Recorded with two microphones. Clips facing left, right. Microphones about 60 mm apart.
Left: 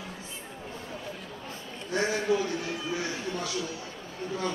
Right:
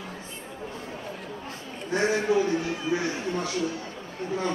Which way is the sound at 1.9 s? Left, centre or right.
Right.